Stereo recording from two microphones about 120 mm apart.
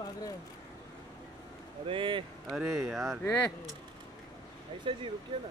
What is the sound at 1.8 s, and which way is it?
Speech, 45° right (ahead or behind).